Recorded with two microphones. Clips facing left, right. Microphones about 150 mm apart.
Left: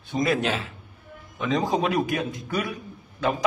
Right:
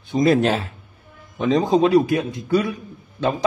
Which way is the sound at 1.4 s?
25° right (ahead or behind).